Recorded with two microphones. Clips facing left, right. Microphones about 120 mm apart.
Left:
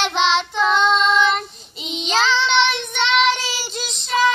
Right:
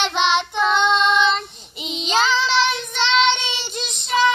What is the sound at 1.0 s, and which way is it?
Child singing, 20° right (ahead or behind).